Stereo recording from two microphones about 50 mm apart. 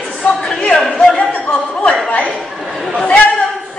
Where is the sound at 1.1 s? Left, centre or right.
Centre.